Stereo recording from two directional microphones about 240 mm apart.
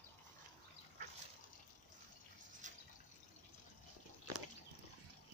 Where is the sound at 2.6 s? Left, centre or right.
Right.